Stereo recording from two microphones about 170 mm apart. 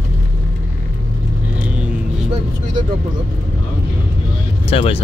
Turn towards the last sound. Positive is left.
turn(degrees=35)  # may be behind; listen again after turning